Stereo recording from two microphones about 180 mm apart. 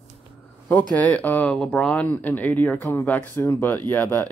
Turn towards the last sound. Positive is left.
turn(degrees=10)  # may be behind; listen again after turning